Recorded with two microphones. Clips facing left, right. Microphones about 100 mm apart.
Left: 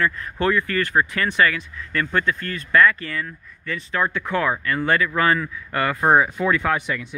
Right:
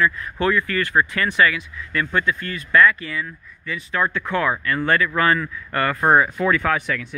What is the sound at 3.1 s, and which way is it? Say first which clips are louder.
Speech: even; 60° left (ahead or behind).